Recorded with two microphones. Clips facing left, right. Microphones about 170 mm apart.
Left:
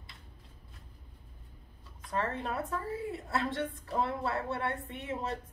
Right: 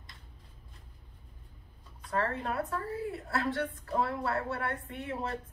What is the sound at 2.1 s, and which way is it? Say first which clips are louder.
Speech: right 2 dB; 20° left (ahead or behind).